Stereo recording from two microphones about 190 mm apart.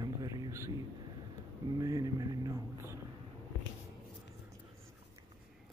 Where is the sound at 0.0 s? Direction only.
20° right (ahead or behind).